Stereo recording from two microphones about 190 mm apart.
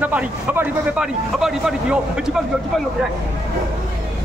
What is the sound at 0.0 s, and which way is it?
Speech, 10° right (ahead or behind).